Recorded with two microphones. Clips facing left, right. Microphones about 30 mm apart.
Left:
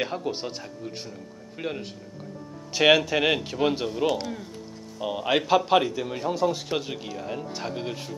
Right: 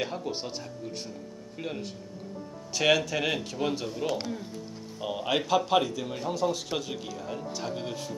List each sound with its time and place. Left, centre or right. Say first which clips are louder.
0.0 s speech: left 4 dB; centre